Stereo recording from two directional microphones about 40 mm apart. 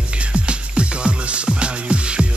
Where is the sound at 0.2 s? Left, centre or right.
Right.